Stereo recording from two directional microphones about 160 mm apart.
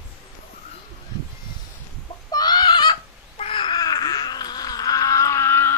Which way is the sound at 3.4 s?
35° left (ahead or behind).